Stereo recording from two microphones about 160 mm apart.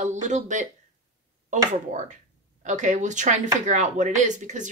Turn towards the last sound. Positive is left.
turn(degrees=-50)  # may be behind; listen again after turning